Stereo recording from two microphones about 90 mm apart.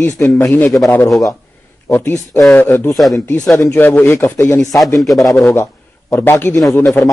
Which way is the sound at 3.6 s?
25° left (ahead or behind).